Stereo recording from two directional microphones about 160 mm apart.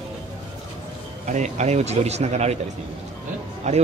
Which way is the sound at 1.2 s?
50° right (ahead or behind).